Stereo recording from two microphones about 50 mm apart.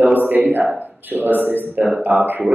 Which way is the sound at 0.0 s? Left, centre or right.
Right.